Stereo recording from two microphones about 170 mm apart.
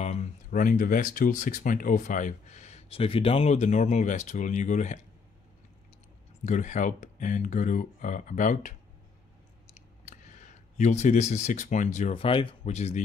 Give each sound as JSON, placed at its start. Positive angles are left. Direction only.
{"t": 0.0, "sound": "speech", "side_deg": 40}
{"t": 6.4, "sound": "speech", "side_deg": 45}
{"t": 9.8, "sound": "speech", "side_deg": 45}